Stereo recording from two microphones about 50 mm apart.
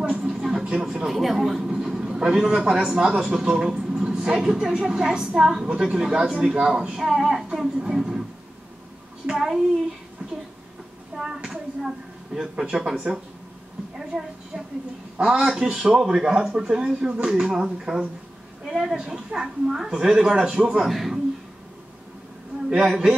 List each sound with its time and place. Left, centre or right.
0.2 s a sound: centre
0.7 s speech: centre
1.0 s a man's voice: centre
9.3 s speech: centre
11.1 s a sound: centre
12.4 s speech: centre
13.9 s speech: centre
20.8 s a man's voice: centre
22.8 s speech: centre